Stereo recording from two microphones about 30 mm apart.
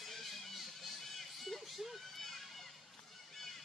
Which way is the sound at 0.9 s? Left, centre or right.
Centre.